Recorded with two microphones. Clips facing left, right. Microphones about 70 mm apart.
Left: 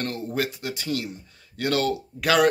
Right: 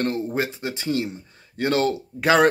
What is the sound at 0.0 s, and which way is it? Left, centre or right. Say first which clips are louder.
Speech: right 4 dB; right.